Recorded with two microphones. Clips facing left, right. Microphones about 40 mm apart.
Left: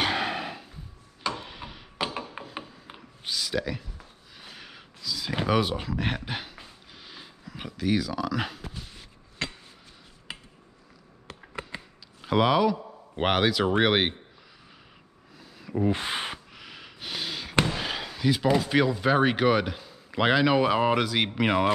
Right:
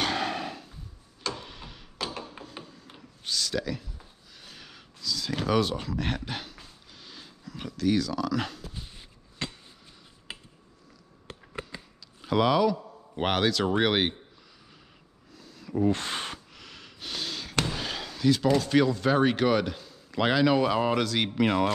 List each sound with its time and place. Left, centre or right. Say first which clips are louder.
0.0 s a sound: left 2 dB; centre
11.4 s mechanisms: left 2 dB; left
15.3 s snort: even; centre